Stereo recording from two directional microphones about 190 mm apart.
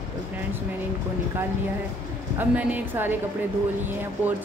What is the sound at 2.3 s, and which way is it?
Speech, 10° right (ahead or behind).